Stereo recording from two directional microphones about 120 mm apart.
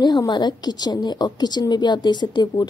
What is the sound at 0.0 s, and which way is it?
A woman's voice, 35° left (ahead or behind).